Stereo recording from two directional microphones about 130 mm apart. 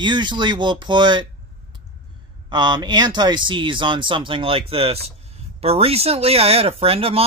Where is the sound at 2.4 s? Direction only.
35° right (ahead or behind).